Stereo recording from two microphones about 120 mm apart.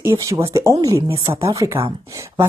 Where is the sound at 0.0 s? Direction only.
20° right (ahead or behind).